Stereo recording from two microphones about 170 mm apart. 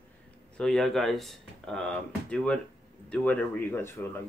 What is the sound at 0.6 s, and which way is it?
Speech, centre (ahead or behind).